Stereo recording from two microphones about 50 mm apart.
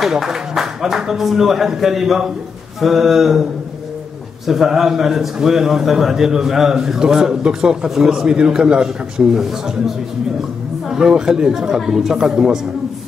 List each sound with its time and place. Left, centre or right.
0.0 s a man's voice: centre
4.5 s a man's voice: centre